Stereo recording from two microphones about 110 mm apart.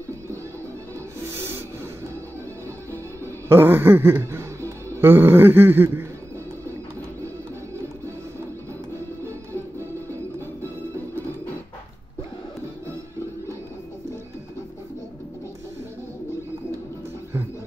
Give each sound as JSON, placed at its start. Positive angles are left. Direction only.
{"t": 3.4, "sound": "music", "side_deg": -20}